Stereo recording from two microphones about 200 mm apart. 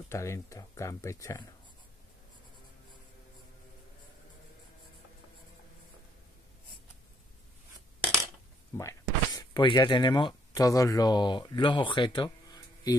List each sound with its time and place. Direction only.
0.1 s speech: 15° left (ahead or behind)
8.7 s speech: 15° left (ahead or behind)